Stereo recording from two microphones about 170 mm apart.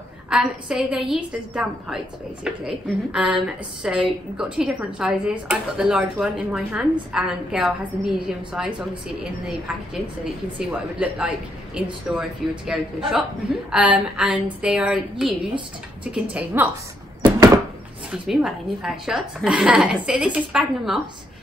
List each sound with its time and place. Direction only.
0.3 s a woman's voice: 5° right (ahead or behind)
10.6 s a woman's voice: 5° right (ahead or behind)
18.1 s a woman's voice: 5° right (ahead or behind)